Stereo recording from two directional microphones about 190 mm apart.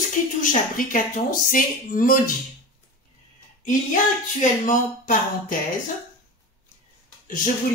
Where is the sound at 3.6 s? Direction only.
45° left (ahead or behind).